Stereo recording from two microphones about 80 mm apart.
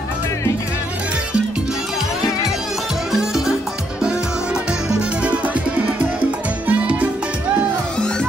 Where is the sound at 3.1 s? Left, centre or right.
Centre.